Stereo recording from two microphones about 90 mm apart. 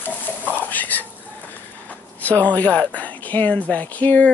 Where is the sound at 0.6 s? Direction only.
20° left (ahead or behind).